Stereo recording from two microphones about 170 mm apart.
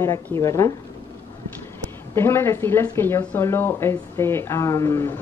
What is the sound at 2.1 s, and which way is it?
Speech, 15° left (ahead or behind).